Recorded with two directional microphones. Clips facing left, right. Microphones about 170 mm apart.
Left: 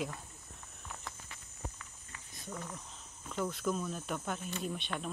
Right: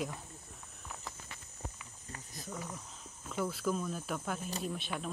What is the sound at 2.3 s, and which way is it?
Speech, centre (ahead or behind).